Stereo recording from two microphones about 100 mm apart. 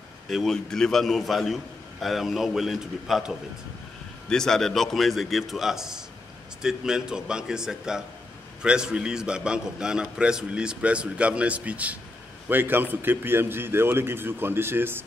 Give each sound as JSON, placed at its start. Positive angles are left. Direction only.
{"t": 0.3, "sound": "a man's voice", "side_deg": 5}